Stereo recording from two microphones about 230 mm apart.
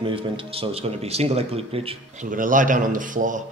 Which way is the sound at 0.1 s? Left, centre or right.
Right.